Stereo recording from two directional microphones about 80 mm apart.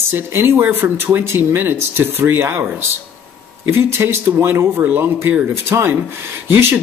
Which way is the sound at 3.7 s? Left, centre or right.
Right.